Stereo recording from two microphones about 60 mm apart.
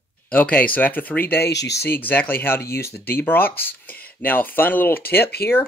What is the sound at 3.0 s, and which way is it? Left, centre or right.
Speech, left.